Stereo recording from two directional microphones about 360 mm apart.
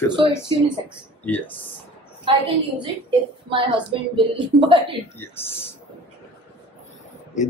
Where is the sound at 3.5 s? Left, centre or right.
Centre.